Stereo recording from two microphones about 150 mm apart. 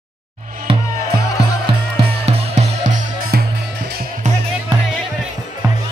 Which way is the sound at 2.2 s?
45° right (ahead or behind).